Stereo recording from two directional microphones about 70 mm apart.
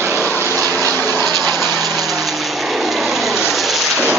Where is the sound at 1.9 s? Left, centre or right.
Centre.